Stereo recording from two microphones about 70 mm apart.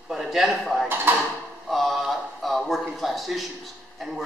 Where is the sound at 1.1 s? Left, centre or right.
Right.